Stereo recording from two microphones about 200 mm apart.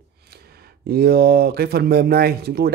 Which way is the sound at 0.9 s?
50° right (ahead or behind).